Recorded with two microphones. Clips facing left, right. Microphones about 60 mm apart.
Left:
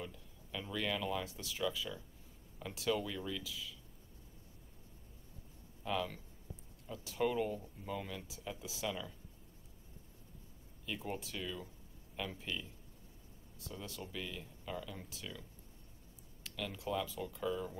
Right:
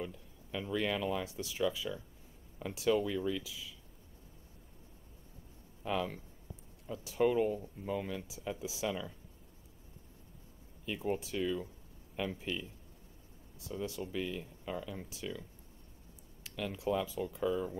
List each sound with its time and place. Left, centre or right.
0.0 s speech: right
5.9 s speech: right
10.9 s speech: centre
13.7 s speech: centre
16.4 s speech: centre